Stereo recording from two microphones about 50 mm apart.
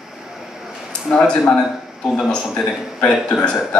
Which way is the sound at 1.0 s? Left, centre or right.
Centre.